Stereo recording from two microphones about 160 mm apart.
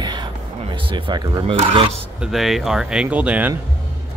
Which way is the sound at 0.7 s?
35° right (ahead or behind).